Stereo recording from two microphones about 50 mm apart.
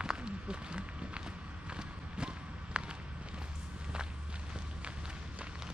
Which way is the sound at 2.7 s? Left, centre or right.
Right.